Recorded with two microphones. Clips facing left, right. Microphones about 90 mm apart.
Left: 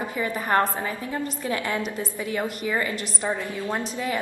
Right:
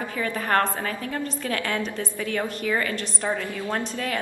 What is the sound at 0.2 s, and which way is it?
A woman's voice, 15° left (ahead or behind).